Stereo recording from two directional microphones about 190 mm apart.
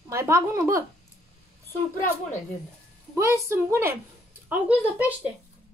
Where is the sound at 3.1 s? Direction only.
10° right (ahead or behind).